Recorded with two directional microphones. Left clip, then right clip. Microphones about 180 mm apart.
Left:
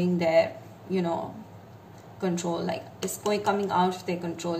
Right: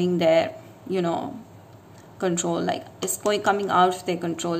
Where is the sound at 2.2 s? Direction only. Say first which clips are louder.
Right 5 dB; 55° right (ahead or behind).